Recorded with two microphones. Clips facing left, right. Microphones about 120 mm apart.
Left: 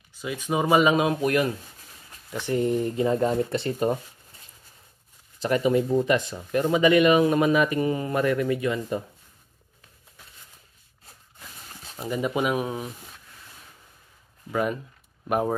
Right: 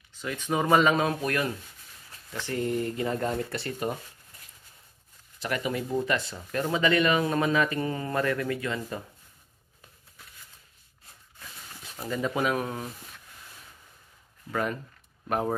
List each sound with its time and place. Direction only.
0.1 s speech: 10° left (ahead or behind)
5.4 s speech: 25° left (ahead or behind)
12.0 s speech: 15° left (ahead or behind)
14.5 s speech: 10° left (ahead or behind)